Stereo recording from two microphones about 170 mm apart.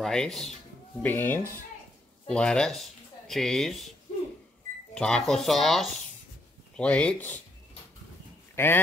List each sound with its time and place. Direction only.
0.0 s speech: 5° left (ahead or behind)
4.9 s speech: 5° left (ahead or behind)
8.5 s speech: 15° left (ahead or behind)